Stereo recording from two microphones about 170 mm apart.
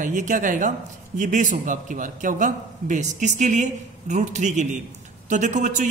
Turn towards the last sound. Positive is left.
turn(degrees=-45)  # may be behind; listen again after turning